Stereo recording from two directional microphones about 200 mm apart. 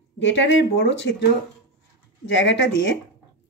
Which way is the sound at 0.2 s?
65° left (ahead or behind).